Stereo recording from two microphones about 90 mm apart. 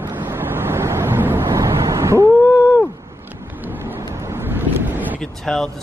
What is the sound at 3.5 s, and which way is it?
Vehicle, 20° right (ahead or behind).